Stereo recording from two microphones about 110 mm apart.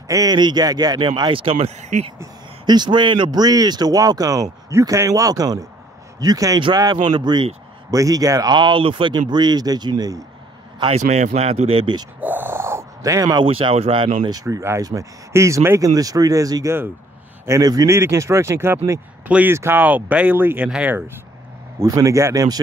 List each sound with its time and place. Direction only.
0.1 s speech: 35° right (ahead or behind)
1.4 s speech: 55° right (ahead or behind)
1.8 s speech: 90° right
2.6 s speech: 40° right (ahead or behind)
7.9 s speech: 30° right (ahead or behind); by 9.1 s 55° right (ahead or behind)
9.1 s speech: 40° right (ahead or behind)
10.9 s speech: 85° right; by 11.9 s 65° right (ahead or behind)
12.2 s gasp: 15° right (ahead or behind); by 13.4 s 30° right (ahead or behind)
13.4 s speech: 50° right (ahead or behind)
14.3 s speech: 30° right (ahead or behind)
19.2 s speech: 15° right (ahead or behind)
21.7 s speech: 30° right (ahead or behind)